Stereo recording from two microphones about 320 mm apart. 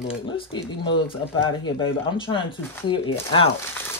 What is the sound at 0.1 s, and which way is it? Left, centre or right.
Speech, centre.